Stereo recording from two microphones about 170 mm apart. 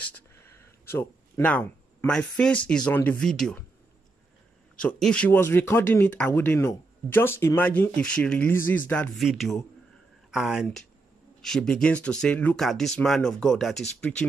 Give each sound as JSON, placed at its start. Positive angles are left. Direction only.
{"t": 0.8, "sound": "speech", "side_deg": 15}
{"t": 4.7, "sound": "speech", "side_deg": 5}